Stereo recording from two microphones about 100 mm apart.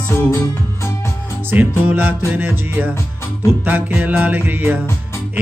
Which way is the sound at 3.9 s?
15° right (ahead or behind).